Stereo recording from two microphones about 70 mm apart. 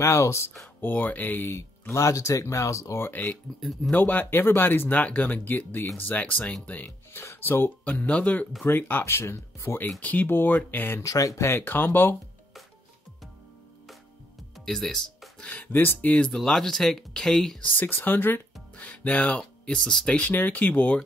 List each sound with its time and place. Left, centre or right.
0.0 s speech: left
0.7 s speech: left
2.0 s speech: left
3.5 s speech: centre
3.9 s speech: left
7.8 s speech: left
11.0 s speech: left
11.4 s speech: left
14.7 s speech: centre
15.5 s speech: left
16.3 s speech: centre
17.7 s speech: left; by 20.2 s centre
20.2 s speech: left